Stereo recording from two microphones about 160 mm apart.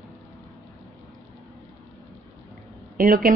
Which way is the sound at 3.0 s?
65° right (ahead or behind).